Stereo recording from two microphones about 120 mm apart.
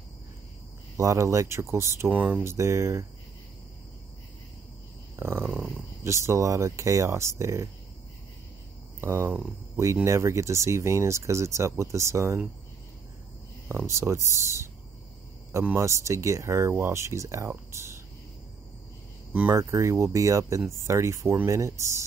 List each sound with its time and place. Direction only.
0.9 s speech: 25° right (ahead or behind)
2.1 s speech: 10° right (ahead or behind)
2.4 s speech: 25° right (ahead or behind)
5.1 s a sound: 20° right (ahead or behind)
5.4 s a sound: 10° right (ahead or behind)
6.0 s speech: 25° right (ahead or behind)
9.0 s speech: 20° right (ahead or behind)
13.7 s speech: 25° right (ahead or behind)
19.5 s speech: 25° right (ahead or behind)